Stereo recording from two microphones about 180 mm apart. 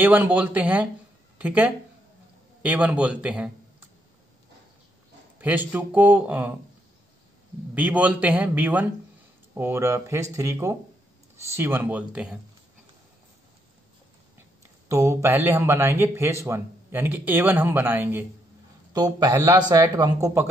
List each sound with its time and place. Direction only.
0.0 s a man's voice: 10° right (ahead or behind)
5.4 s a man's voice: 10° right (ahead or behind)
7.7 s a man's voice: 10° right (ahead or behind)
14.9 s a man's voice: 15° right (ahead or behind)
18.9 s speech: 20° right (ahead or behind)